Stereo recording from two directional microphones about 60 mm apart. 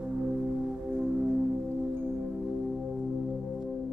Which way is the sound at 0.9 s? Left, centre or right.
Centre.